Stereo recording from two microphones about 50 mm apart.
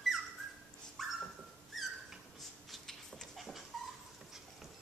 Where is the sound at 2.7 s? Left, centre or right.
Centre.